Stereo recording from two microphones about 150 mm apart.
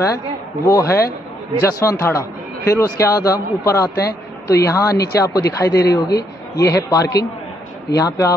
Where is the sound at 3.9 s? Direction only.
90° left.